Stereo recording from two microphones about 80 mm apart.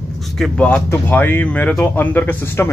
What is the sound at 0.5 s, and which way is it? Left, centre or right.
Speech, centre.